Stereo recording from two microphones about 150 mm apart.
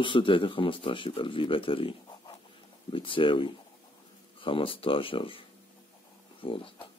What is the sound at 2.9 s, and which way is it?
Speech, 35° left (ahead or behind).